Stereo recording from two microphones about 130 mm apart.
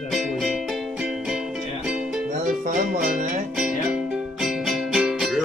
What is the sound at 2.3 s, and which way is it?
Music, 70° right (ahead or behind).